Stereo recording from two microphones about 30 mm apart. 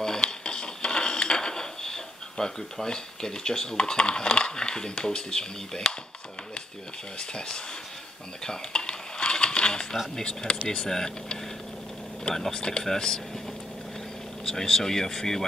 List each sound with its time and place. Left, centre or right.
0.2 s dishes: left
3.7 s speech: left
8.5 s a sound: left
10.2 s speech: left
10.7 s speech: centre
12.5 s speech: left
14.4 s speech: centre